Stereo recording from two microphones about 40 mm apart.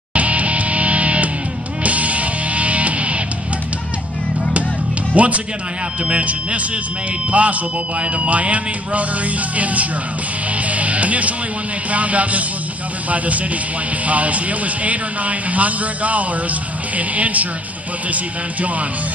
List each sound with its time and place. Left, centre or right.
0.1 s music: right
5.1 s speech: right
10.7 s music: right
11.9 s speech: right
14.0 s speech: right